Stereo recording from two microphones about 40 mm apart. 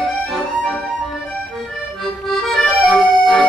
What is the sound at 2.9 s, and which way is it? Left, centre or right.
Music, centre.